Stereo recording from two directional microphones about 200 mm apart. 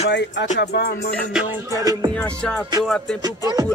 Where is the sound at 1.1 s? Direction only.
Centre (ahead or behind).